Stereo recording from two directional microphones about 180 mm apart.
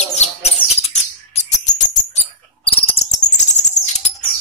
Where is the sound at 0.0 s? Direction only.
40° left (ahead or behind).